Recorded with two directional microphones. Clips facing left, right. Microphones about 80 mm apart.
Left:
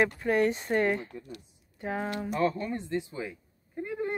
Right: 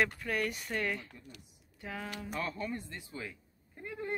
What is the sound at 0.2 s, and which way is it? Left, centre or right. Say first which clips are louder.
Speech: left 9 dB; left.